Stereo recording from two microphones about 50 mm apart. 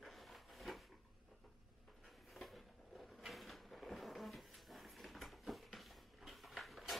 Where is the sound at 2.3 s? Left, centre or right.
Centre.